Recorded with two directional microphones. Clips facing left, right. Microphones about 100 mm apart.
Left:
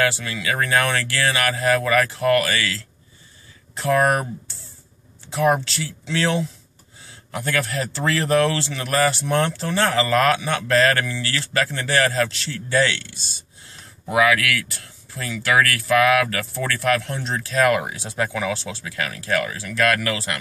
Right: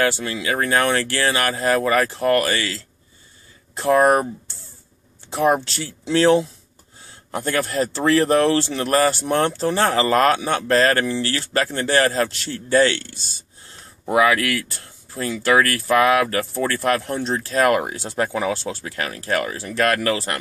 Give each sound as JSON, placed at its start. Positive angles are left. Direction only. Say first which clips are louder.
{"t": 0.0, "sound": "speech", "louder": "right 1 dB", "side_deg": -30}
{"t": 3.8, "sound": "speech", "louder": "right 3 dB", "side_deg": -25}
{"t": 5.3, "sound": "speech", "louder": "right 1 dB", "side_deg": -30}
{"t": 14.0, "sound": "speech", "louder": "right 1 dB", "side_deg": -30}